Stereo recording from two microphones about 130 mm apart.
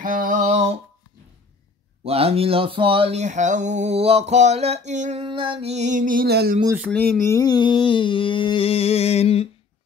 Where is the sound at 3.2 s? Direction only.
70° right (ahead or behind).